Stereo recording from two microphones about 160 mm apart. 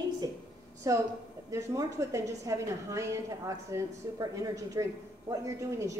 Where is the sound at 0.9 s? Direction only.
20° right (ahead or behind).